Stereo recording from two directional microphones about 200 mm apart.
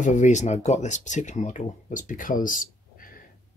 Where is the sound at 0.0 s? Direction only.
35° left (ahead or behind).